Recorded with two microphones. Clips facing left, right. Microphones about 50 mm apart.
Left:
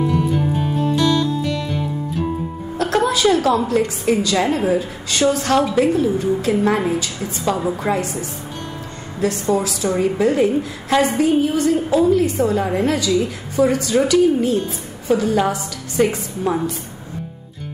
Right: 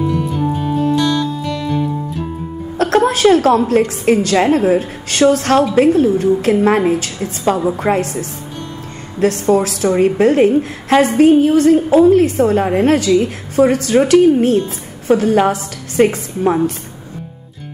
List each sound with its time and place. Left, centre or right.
0.1 s music: centre
2.8 s a woman's voice: right